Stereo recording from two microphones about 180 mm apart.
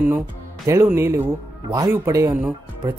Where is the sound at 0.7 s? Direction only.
15° right (ahead or behind).